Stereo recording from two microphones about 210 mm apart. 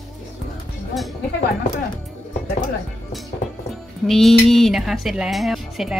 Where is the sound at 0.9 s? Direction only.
Centre (ahead or behind).